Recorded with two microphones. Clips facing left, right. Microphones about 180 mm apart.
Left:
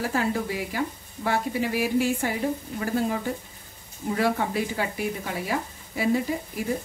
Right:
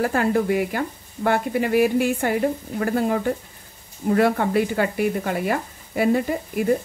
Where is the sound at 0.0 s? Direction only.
55° right (ahead or behind).